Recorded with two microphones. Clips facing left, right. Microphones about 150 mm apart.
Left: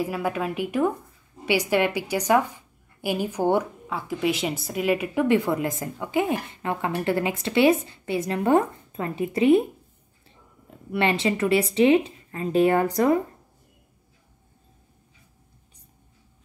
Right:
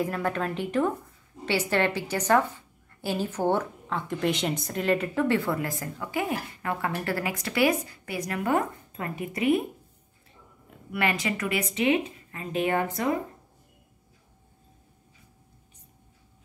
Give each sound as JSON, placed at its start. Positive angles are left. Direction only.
{"t": 0.0, "sound": "a woman's voice", "side_deg": 10}
{"t": 10.9, "sound": "a woman's voice", "side_deg": 30}